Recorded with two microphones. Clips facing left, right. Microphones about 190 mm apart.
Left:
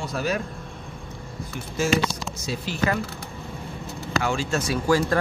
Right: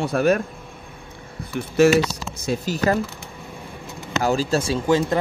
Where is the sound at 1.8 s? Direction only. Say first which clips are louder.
Right 6 dB; 70° right (ahead or behind).